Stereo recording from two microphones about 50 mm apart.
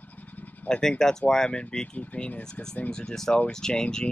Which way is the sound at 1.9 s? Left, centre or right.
Left.